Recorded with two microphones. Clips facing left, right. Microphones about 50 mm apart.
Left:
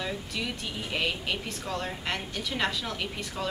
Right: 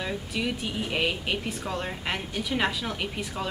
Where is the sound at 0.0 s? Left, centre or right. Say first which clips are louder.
Right 3 dB; centre.